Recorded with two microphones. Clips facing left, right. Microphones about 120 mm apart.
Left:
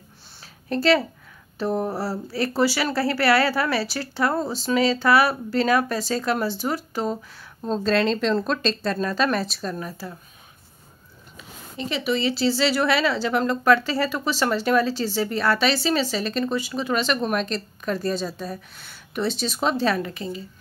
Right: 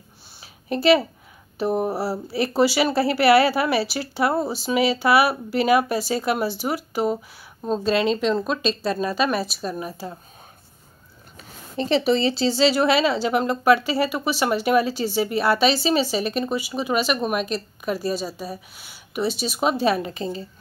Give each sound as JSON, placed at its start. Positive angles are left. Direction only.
{"t": 0.4, "sound": "a sound", "side_deg": -15}
{"t": 1.6, "sound": "speech", "side_deg": -15}
{"t": 11.7, "sound": "speech", "side_deg": -35}
{"t": 20.1, "sound": "a woman's voice", "side_deg": -30}